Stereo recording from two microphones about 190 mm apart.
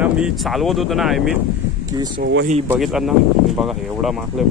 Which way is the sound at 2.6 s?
Centre (ahead or behind).